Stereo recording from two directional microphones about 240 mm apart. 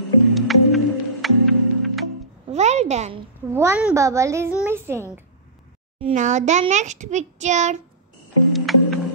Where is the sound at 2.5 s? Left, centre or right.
Right.